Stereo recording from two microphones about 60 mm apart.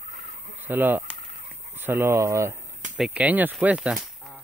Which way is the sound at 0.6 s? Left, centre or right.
Right.